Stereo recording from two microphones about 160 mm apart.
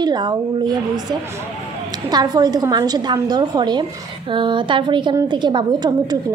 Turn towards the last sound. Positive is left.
turn(degrees=-25)  # may be behind; listen again after turning